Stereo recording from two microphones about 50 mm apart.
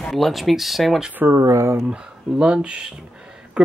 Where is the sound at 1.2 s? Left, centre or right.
Right.